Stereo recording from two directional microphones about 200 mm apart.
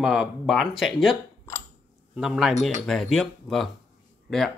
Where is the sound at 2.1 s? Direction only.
Centre (ahead or behind).